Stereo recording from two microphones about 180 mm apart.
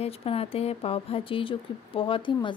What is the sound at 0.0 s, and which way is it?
A woman's voice, 35° left (ahead or behind).